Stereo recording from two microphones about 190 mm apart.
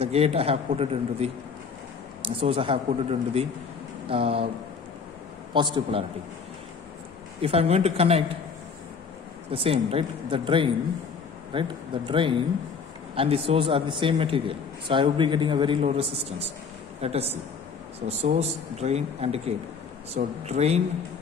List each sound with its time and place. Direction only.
0.0 s a man's voice: 30° right (ahead or behind)
5.5 s a man's voice: 25° right (ahead or behind)
7.4 s a man's voice: 30° right (ahead or behind)
9.5 s a man's voice: 30° right (ahead or behind)